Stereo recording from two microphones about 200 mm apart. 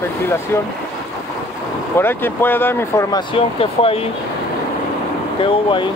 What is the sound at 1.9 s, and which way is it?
Speech, 10° left (ahead or behind).